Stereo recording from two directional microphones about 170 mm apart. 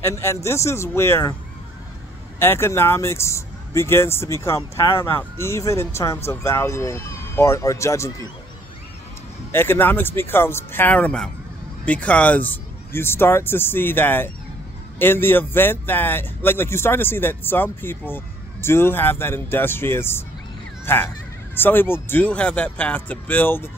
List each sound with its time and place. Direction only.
0.0 s speech: 15° left (ahead or behind)
2.3 s speech: 15° left (ahead or behind)
9.5 s speech: 15° left (ahead or behind)